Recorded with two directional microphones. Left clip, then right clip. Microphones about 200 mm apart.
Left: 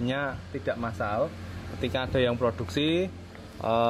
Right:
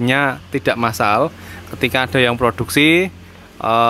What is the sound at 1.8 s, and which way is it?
Speech, 10° right (ahead or behind).